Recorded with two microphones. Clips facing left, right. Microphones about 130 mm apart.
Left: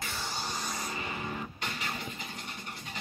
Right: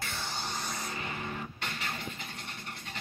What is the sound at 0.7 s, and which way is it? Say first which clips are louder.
Music: left 1 dB; 5° left (ahead or behind).